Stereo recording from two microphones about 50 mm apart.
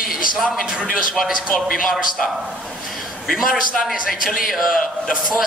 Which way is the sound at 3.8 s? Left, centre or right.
Centre.